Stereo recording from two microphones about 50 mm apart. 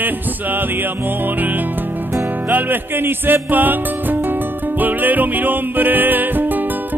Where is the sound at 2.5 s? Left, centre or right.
Right.